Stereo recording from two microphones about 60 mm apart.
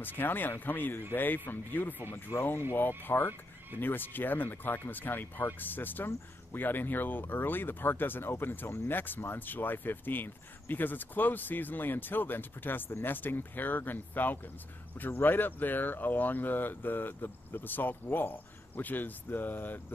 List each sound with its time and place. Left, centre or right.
0.0 s speech: left